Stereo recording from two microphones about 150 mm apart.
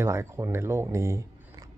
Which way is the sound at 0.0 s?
20° right (ahead or behind).